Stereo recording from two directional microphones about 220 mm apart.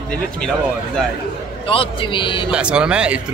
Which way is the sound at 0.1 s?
5° left (ahead or behind).